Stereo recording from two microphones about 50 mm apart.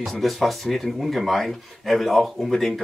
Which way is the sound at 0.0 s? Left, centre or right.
Centre.